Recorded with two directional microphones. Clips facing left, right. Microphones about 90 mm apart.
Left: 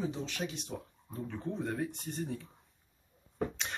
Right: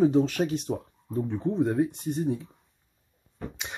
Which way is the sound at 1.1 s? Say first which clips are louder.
Right 10 dB; 25° right (ahead or behind).